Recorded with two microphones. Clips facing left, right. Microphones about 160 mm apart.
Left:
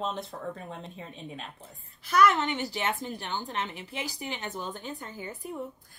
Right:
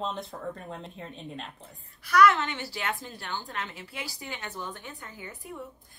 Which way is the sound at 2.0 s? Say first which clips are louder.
Right 1 dB; 25° left (ahead or behind).